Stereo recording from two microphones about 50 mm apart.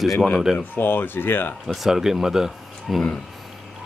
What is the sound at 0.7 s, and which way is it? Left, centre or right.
Speech, left.